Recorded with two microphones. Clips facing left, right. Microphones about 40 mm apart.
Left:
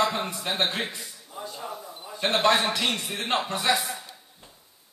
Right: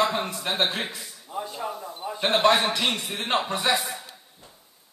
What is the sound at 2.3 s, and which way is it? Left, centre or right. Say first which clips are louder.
A man's voice: right 2 dB; centre.